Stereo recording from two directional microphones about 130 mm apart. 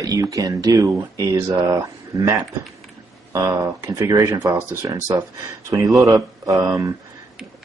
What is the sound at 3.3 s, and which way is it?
Speech, 25° right (ahead or behind).